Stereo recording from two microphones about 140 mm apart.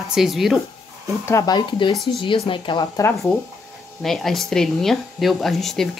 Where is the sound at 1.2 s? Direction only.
25° left (ahead or behind).